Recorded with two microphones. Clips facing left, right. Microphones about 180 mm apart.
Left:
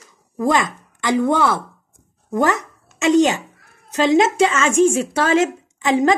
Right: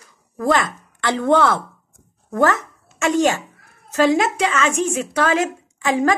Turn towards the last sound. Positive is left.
turn(degrees=20)  # may be behind; listen again after turning